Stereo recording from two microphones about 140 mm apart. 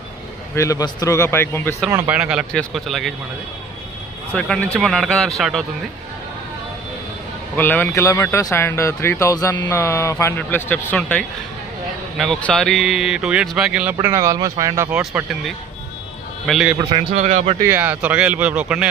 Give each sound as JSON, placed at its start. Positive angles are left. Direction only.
{"t": 0.6, "sound": "speech", "side_deg": 25}
{"t": 1.9, "sound": "a man's voice", "side_deg": -15}
{"t": 4.3, "sound": "a man's voice", "side_deg": 10}
{"t": 7.5, "sound": "a man's voice", "side_deg": 10}
{"t": 14.0, "sound": "speech", "side_deg": -20}
{"t": 14.9, "sound": "a man's voice", "side_deg": -5}
{"t": 17.1, "sound": "speech", "side_deg": -55}
{"t": 17.6, "sound": "speech", "side_deg": -15}